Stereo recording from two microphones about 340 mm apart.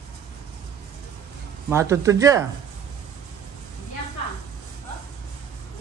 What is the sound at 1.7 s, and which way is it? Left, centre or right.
Speech, centre.